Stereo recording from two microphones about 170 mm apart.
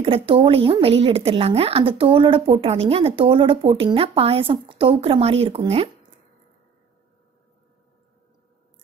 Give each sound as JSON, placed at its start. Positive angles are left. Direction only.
{"t": 0.0, "sound": "speech", "side_deg": -30}